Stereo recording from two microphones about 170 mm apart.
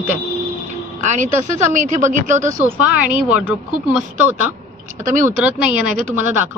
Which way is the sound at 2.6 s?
10° right (ahead or behind).